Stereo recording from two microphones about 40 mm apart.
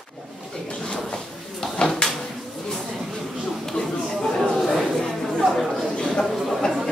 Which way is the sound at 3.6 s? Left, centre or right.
Centre.